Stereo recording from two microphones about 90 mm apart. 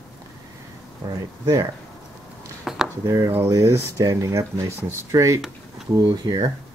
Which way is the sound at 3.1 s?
25° right (ahead or behind).